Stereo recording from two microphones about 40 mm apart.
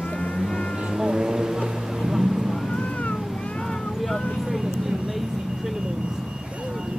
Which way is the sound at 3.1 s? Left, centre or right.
Centre.